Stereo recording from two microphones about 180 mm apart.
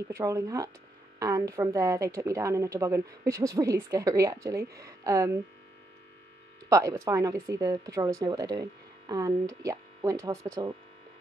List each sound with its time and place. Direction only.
0.1 s a woman's voice: 20° right (ahead or behind)
6.7 s a woman's voice: 20° right (ahead or behind)